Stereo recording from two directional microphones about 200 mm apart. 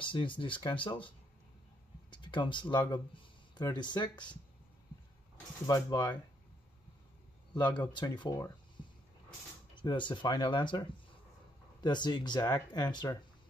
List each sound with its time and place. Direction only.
0.0 s speech: 25° left (ahead or behind)
5.7 s speech: 20° left (ahead or behind)
7.5 s speech: 20° left (ahead or behind)
9.8 s speech: 25° left (ahead or behind)